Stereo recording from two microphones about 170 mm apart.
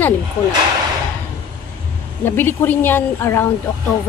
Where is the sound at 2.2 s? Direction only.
10° left (ahead or behind).